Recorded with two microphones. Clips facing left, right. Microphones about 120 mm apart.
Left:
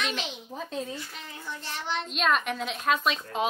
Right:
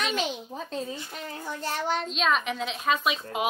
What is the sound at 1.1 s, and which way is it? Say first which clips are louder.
A child's voice: right 4 dB; 40° right (ahead or behind).